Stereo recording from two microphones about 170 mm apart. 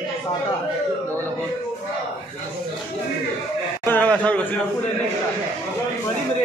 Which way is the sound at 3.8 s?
10° left (ahead or behind).